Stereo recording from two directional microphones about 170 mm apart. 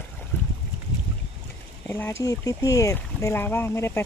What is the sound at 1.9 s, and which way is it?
Speech, 15° left (ahead or behind).